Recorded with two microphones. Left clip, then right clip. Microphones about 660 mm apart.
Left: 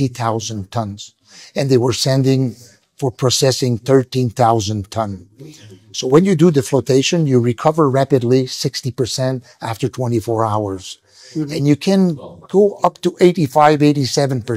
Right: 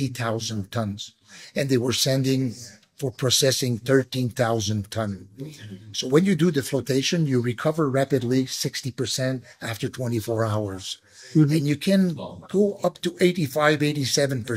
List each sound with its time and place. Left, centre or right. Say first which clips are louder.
0.0 s speech: left 8 dB; left
11.4 s speech: left 7 dB; left